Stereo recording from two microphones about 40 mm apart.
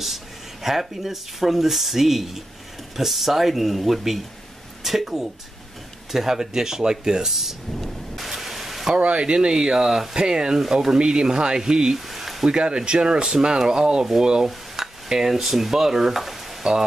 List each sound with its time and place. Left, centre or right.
0.0 s speech: centre
8.2 s vehicle: centre
8.9 s speech: right
10.6 s speech: centre
10.9 s speech: centre
12.1 s a sound: centre
12.4 s speech: right
14.4 s stir: centre
16.6 s speech: centre